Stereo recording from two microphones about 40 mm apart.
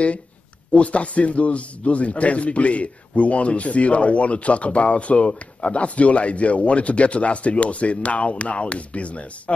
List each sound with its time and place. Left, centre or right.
0.7 s speech: left